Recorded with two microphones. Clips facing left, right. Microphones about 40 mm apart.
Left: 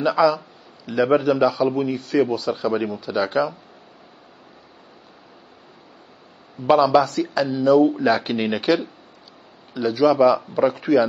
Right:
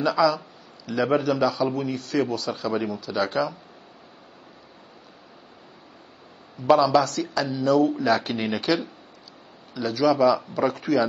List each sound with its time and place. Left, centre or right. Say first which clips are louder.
0.0 s a man's voice: left 3 dB; centre
6.8 s a man's voice: left 3 dB; centre
9.8 s a man's voice: left 4 dB; centre